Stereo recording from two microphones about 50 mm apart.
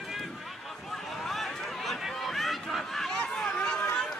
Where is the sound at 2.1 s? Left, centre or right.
Centre.